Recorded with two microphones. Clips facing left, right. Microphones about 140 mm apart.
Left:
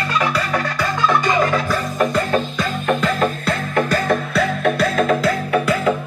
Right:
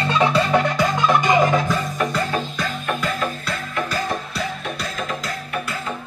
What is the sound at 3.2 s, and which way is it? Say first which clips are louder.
Music: left 6 dB; 50° left (ahead or behind).